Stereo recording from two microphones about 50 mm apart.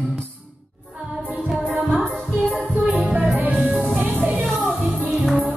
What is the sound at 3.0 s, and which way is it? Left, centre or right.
Music, right.